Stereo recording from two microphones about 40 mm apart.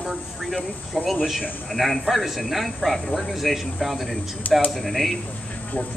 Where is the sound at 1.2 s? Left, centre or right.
Centre.